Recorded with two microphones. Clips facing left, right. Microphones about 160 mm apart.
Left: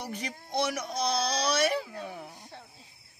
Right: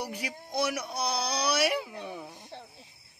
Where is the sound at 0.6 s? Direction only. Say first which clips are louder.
Even; 10° right (ahead or behind).